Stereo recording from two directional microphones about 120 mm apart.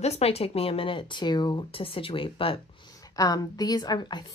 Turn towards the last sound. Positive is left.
turn(degrees=40)  # may be behind; listen again after turning